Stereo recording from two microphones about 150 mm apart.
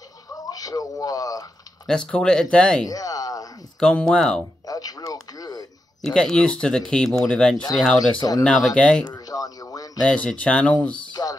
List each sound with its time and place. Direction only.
0.3 s speech: 25° left (ahead or behind)
1.9 s speech: 5° left (ahead or behind)
2.9 s a sound: 25° left (ahead or behind)
3.8 s speech: 5° left (ahead or behind)
4.6 s a sound: 25° left (ahead or behind)
6.0 s speech: 5° left (ahead or behind)
8.2 s speech: 25° left (ahead or behind)
8.5 s speech: 5° left (ahead or behind)
9.3 s speech: 25° left (ahead or behind)
10.0 s speech: 10° left (ahead or behind)
11.1 s music: 25° left (ahead or behind)